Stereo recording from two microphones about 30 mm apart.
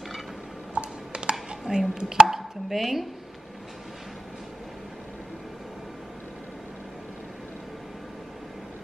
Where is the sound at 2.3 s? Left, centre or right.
Centre.